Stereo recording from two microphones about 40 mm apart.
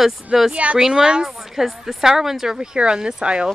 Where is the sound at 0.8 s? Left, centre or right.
Centre.